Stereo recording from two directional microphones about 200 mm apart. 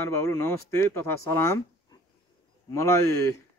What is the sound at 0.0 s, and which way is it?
Speech, 15° left (ahead or behind).